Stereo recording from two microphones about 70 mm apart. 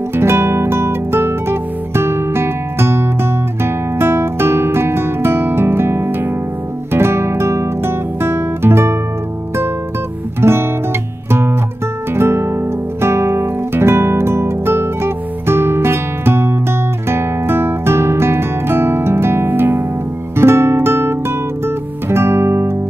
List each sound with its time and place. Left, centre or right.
0.1 s music: right
3.6 s guitar: right
10.4 s guitar: right
12.1 s music: right
17.1 s guitar: right
20.3 s music: right